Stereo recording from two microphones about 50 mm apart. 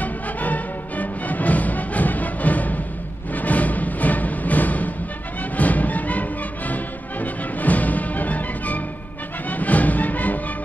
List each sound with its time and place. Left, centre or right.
0.0 s music: left